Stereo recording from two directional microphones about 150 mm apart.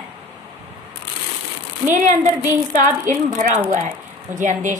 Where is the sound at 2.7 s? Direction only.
55° right (ahead or behind).